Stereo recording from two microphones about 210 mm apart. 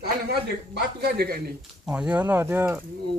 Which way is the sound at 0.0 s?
50° right (ahead or behind).